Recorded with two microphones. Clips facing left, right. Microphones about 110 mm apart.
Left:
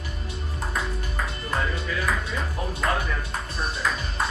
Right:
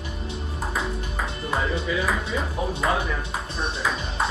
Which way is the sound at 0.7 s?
5° right (ahead or behind).